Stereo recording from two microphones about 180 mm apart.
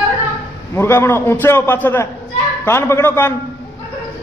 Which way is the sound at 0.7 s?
15° left (ahead or behind).